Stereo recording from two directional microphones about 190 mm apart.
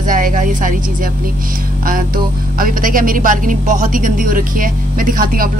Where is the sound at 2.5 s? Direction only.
45° right (ahead or behind).